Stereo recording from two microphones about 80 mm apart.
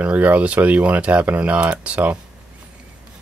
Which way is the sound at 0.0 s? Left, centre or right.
Centre.